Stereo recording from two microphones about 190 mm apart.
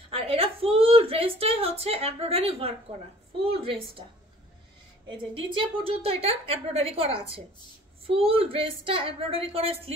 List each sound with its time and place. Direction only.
0.1 s a sound: 30° right (ahead or behind)
3.5 s a woman's voice: 30° right (ahead or behind)
5.1 s a woman's voice: 30° right (ahead or behind)